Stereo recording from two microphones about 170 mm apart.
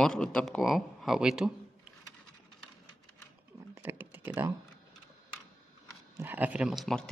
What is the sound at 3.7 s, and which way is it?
Computer keyboard, 10° right (ahead or behind).